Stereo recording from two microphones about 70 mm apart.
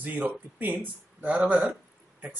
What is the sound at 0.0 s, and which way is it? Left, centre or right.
A man's voice, right.